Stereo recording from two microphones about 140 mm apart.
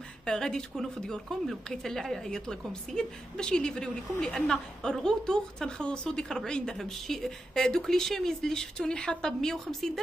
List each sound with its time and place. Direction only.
0.2 s a woman's voice: 5° left (ahead or behind)